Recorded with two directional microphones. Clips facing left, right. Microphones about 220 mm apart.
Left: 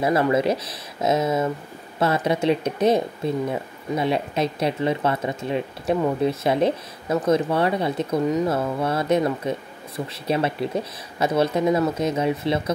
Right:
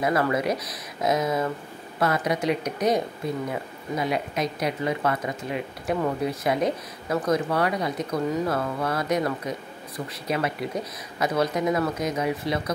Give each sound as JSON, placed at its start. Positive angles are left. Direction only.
{"t": 0.0, "sound": "speech", "side_deg": 25}